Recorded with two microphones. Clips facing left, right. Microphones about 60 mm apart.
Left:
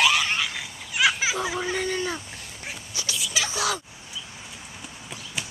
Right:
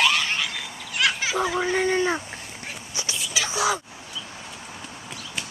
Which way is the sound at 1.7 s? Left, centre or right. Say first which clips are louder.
Right 5 dB; right.